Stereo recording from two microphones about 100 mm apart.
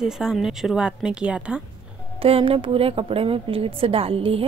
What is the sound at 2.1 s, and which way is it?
A woman's voice, 70° right (ahead or behind).